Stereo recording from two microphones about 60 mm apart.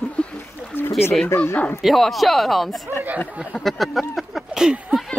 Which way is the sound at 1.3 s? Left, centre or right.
Left.